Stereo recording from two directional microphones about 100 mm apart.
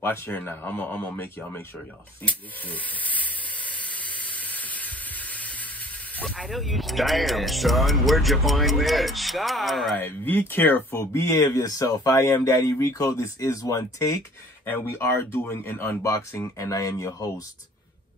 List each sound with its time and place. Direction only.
0.0 s speech: 20° left (ahead or behind)
6.2 s speech: 5° left (ahead or behind)
9.9 s speech: 20° left (ahead or behind); by 14.2 s 35° left (ahead or behind)
14.7 s speech: 25° left (ahead or behind)